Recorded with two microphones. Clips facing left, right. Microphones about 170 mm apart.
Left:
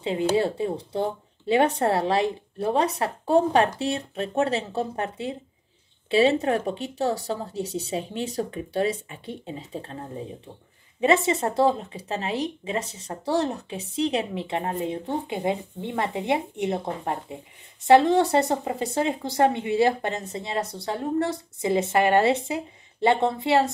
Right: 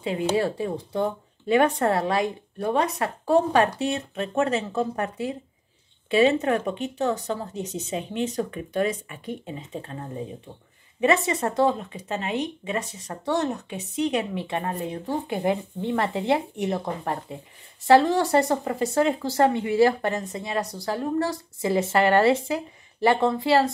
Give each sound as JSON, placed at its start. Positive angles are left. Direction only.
{"t": 0.0, "sound": "speech", "side_deg": 25}
{"t": 11.0, "sound": "speech", "side_deg": 25}